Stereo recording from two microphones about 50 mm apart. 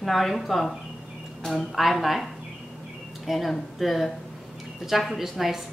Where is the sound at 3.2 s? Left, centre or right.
Centre.